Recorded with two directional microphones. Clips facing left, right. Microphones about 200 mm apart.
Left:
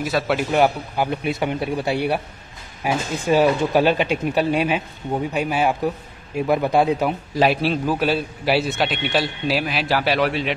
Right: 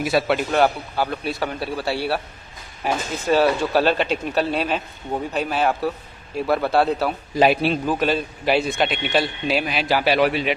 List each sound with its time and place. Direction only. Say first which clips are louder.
0.3 s speech: left 1 dB; 10° left (ahead or behind)
7.3 s a man's voice: right 2 dB; centre (ahead or behind)